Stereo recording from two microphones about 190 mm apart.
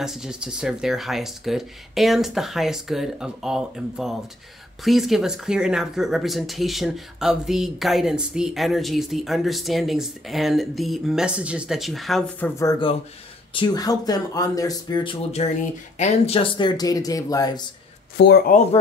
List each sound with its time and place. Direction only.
0.0 s speech: centre (ahead or behind); by 12.7 s 15° left (ahead or behind)
13.5 s speech: 25° left (ahead or behind)
18.1 s speech: 60° left (ahead or behind)